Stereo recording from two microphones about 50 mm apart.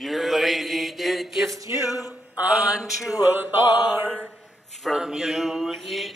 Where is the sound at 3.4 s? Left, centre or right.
Right.